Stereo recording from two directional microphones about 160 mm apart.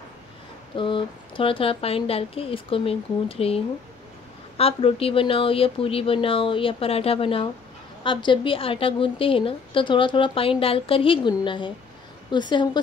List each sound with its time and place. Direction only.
0.7 s a woman's voice: 30° left (ahead or behind)